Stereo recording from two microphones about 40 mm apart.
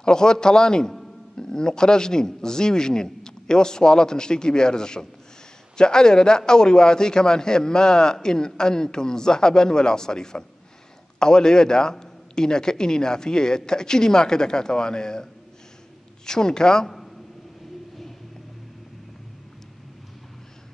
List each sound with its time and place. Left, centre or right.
0.0 s a man's voice: centre
16.3 s a man's voice: centre